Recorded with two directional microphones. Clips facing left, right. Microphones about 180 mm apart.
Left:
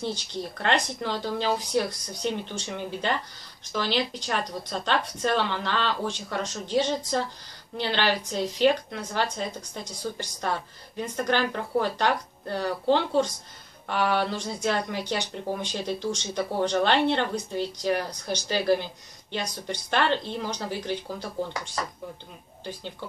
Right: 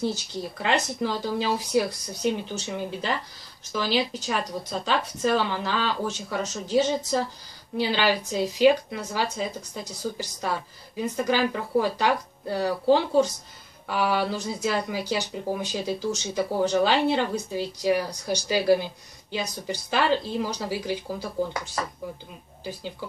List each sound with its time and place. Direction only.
0.0 s speech: 5° right (ahead or behind)